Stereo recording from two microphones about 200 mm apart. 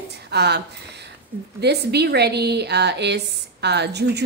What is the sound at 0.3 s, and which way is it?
Speech, 55° right (ahead or behind).